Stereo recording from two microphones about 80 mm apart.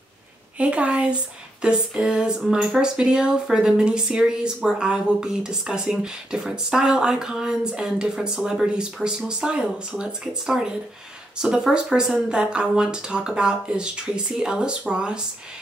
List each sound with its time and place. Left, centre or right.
0.6 s speech: centre